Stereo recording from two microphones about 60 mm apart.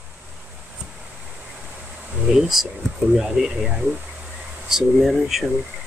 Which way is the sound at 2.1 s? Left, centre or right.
Centre.